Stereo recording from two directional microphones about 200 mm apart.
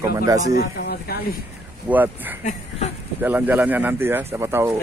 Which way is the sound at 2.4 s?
35° left (ahead or behind).